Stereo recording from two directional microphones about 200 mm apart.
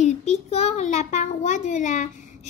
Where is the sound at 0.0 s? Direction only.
35° left (ahead or behind).